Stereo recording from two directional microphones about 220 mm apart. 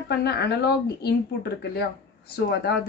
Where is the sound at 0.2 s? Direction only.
45° left (ahead or behind).